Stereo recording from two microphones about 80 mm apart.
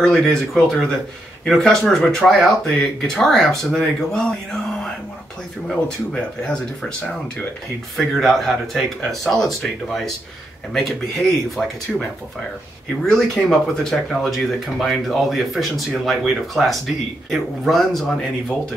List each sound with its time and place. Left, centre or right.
0.0 s speech: centre
5.7 s speech: centre
8.1 s speech: centre